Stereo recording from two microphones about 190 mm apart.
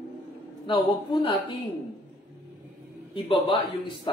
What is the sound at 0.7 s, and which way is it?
Speech, 25° left (ahead or behind).